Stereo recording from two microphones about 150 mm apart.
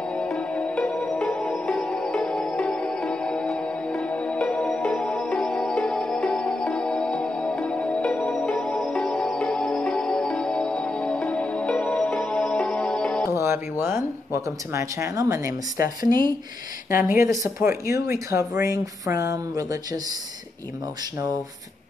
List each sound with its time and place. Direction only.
0.1 s music: 5° left (ahead or behind)
13.4 s a sound: 15° right (ahead or behind)
16.0 s speech: 30° right (ahead or behind)